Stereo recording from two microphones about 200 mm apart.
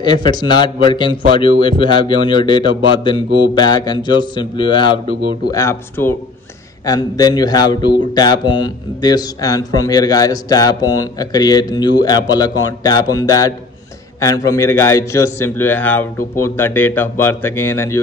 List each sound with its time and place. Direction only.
0.0 s a man's voice: 20° left (ahead or behind)